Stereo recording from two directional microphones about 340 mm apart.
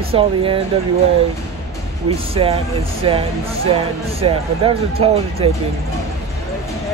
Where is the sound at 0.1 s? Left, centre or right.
Centre.